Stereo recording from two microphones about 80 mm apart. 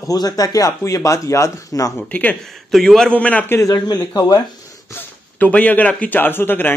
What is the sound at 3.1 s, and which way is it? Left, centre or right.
Speech, centre.